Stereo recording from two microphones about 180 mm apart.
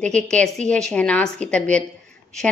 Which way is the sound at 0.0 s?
5° left (ahead or behind).